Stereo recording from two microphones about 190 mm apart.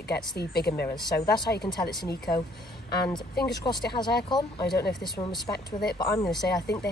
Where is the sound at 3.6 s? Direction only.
25° left (ahead or behind).